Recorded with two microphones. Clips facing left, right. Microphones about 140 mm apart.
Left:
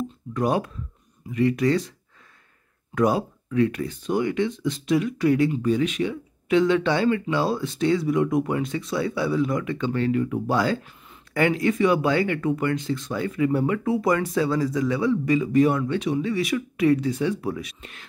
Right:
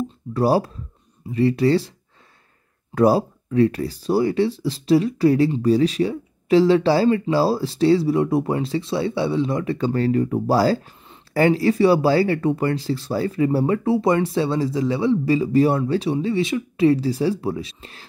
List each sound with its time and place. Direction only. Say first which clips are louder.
0.3 s speech: right 5 dB; 35° right (ahead or behind)
2.9 s speech: right 5 dB; 35° right (ahead or behind)